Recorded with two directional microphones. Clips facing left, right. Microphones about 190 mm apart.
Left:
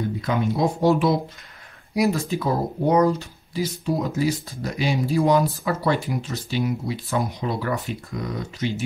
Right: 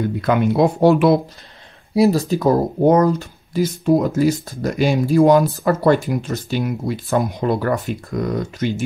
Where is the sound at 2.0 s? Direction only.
35° right (ahead or behind).